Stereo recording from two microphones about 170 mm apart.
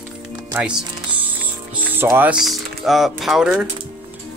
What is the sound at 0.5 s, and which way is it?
Speech, 5° right (ahead or behind).